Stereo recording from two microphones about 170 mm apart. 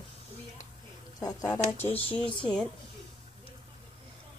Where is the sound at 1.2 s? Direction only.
20° left (ahead or behind).